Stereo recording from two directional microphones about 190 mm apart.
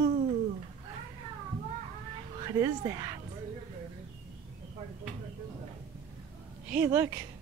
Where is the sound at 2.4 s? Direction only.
20° right (ahead or behind).